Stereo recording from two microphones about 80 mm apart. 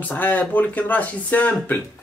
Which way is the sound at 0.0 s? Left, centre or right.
Left.